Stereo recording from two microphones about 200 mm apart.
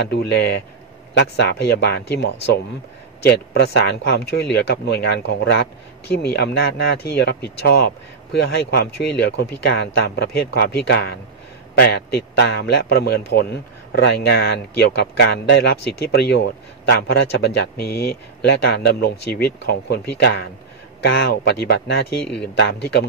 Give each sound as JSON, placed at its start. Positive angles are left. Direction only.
{"t": 0.0, "sound": "speech", "side_deg": 55}
{"t": 22.2, "sound": "speech", "side_deg": 5}
{"t": 22.6, "sound": "speech", "side_deg": 55}